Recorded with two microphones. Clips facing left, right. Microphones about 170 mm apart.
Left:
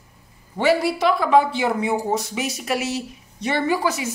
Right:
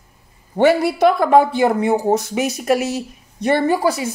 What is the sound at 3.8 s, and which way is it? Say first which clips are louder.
Speech: right 5 dB; 35° right (ahead or behind).